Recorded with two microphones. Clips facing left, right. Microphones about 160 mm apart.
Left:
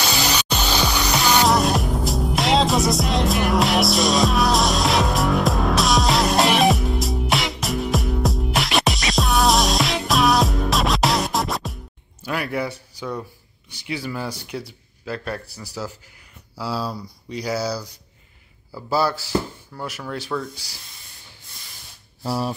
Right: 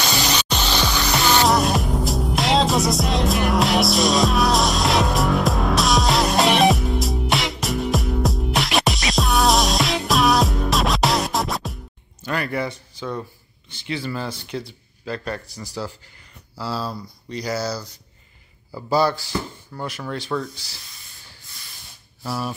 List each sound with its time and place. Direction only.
1.4 s music: centre (ahead or behind)
15.5 s speech: 5° left (ahead or behind)
18.9 s speech: 5° left (ahead or behind)
22.2 s speech: 30° left (ahead or behind)